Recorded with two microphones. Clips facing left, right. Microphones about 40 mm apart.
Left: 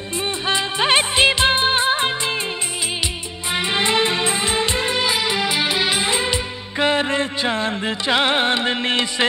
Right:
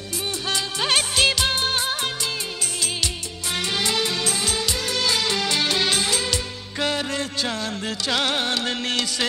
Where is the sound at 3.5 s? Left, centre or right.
Left.